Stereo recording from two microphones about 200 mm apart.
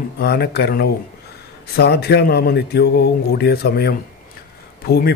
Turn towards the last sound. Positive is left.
turn(degrees=50)  # may be behind; listen again after turning